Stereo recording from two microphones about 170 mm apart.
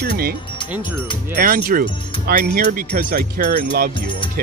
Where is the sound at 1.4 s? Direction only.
55° right (ahead or behind).